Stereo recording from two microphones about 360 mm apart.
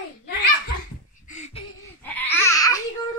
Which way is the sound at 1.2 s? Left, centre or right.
Centre.